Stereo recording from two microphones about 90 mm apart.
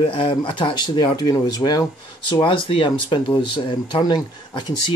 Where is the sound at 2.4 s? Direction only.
70° left (ahead or behind).